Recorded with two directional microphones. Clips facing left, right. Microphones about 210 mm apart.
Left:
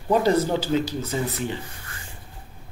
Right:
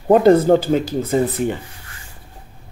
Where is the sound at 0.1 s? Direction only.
55° right (ahead or behind).